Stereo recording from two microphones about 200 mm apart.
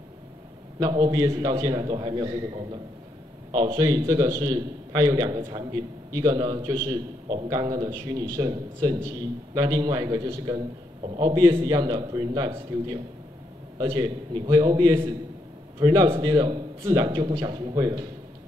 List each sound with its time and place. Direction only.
0.7 s a man's voice: 20° right (ahead or behind)